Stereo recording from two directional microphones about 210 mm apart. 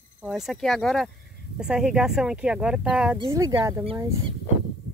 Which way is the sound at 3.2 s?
15° right (ahead or behind).